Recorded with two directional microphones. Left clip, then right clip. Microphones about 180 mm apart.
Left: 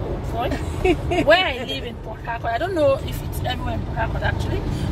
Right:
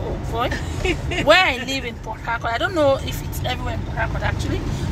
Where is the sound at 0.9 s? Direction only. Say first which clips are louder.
Left 4 dB; 50° left (ahead or behind).